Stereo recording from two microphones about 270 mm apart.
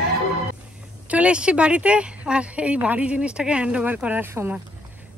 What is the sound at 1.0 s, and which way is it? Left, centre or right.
Speech, centre.